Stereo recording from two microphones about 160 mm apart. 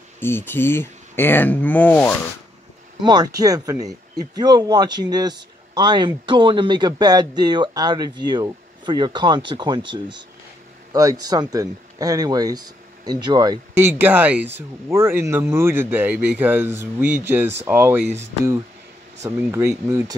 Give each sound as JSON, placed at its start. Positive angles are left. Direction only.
{"t": 0.2, "sound": "speech", "side_deg": 15}
{"t": 3.0, "sound": "speech", "side_deg": -25}
{"t": 13.7, "sound": "speech", "side_deg": -10}
{"t": 19.2, "sound": "speech", "side_deg": -20}